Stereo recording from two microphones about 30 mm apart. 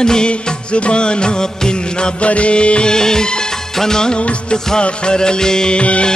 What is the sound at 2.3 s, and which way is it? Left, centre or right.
Music of bollywood, left.